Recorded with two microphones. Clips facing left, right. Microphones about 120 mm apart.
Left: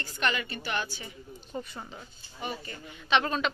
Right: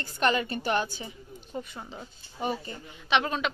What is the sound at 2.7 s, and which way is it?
Speech, 20° right (ahead or behind).